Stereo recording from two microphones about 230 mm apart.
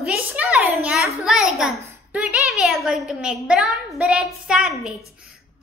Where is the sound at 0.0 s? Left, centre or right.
Centre.